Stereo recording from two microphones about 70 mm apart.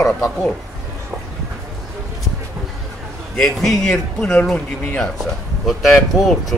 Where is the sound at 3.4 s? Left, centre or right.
Centre.